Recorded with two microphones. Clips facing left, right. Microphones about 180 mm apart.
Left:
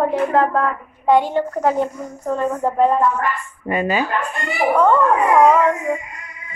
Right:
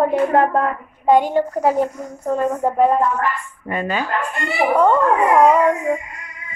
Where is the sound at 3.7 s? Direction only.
5° left (ahead or behind).